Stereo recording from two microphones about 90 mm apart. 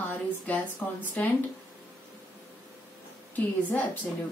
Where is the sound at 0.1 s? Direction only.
20° left (ahead or behind).